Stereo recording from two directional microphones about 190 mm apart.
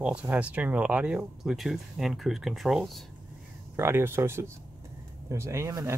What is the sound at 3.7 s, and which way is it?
Speech, 15° right (ahead or behind).